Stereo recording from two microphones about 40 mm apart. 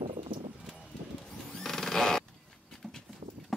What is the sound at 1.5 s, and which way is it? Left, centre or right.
Vehicle, centre.